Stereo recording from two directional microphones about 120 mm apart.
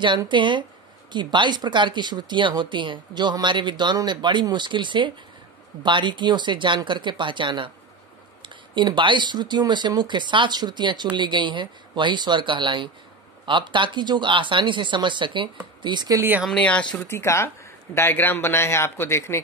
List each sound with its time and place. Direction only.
0.3 s speech: 40° right (ahead or behind)
8.7 s speech: 40° right (ahead or behind)
16.2 s speech: 15° right (ahead or behind)
16.4 s speech: 10° left (ahead or behind)
17.1 s a man's voice: 20° left (ahead or behind)